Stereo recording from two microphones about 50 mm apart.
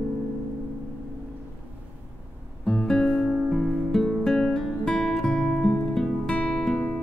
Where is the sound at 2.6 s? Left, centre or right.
Centre.